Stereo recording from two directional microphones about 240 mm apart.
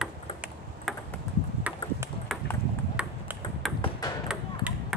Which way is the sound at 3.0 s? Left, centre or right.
Centre.